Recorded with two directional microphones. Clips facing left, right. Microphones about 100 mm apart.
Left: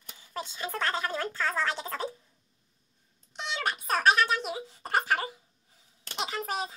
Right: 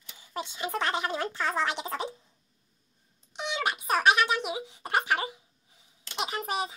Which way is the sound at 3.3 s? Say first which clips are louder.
Right 2 dB; 15° right (ahead or behind).